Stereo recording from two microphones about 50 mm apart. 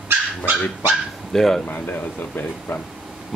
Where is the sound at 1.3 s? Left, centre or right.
Centre.